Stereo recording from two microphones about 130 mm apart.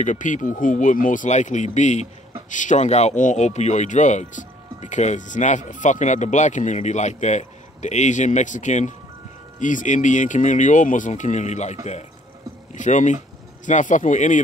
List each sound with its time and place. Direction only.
0.0 s speech: 75° left (ahead or behind)
9.6 s speech: 80° left